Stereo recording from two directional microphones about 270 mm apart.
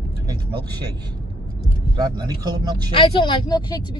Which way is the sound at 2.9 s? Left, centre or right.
Centre.